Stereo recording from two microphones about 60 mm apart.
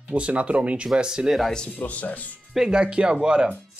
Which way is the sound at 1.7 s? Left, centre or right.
Left.